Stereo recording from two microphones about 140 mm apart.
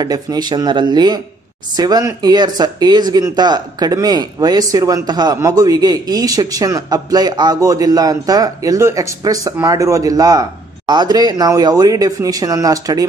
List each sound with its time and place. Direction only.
0.0 s speech: 30° right (ahead or behind)